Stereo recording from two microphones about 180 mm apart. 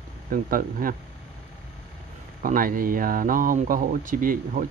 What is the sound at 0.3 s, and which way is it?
Speech, 50° right (ahead or behind).